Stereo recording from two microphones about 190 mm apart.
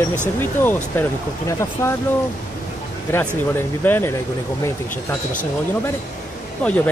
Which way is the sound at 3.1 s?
10° left (ahead or behind).